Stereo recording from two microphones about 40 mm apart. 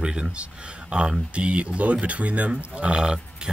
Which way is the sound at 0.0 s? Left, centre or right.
Right.